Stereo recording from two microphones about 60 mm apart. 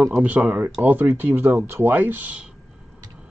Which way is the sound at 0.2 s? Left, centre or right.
Right.